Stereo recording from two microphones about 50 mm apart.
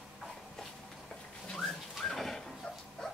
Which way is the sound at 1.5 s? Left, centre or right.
Centre.